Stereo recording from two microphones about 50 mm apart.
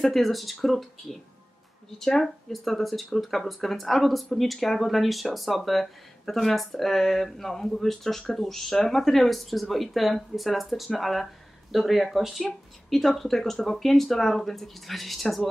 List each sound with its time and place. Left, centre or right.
0.0 s speech: centre